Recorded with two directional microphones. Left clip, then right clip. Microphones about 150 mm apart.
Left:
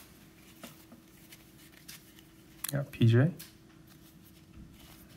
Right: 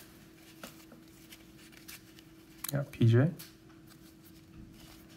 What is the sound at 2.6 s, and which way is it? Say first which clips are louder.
Speech: left 1 dB; centre (ahead or behind).